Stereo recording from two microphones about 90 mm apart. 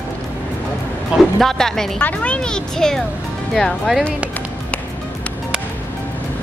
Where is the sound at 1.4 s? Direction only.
5° left (ahead or behind).